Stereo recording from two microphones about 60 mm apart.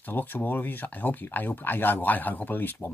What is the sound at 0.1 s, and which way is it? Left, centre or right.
Speech, left.